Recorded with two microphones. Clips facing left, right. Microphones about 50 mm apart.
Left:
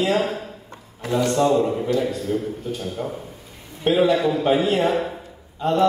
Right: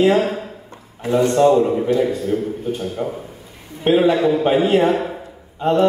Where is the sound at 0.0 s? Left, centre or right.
Right.